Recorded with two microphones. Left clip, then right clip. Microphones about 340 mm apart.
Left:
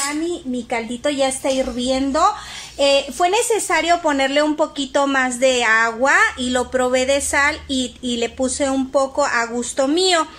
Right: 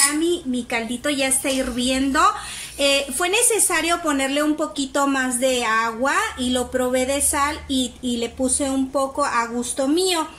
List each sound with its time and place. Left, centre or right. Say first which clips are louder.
0.7 s a woman's voice: left 3 dB; centre